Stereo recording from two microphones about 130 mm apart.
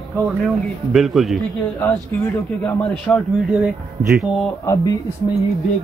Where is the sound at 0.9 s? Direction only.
Centre (ahead or behind).